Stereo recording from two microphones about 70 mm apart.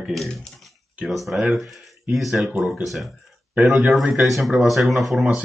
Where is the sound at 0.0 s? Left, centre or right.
Centre.